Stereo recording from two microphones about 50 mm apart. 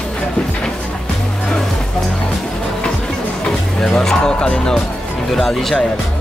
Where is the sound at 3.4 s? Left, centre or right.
Centre.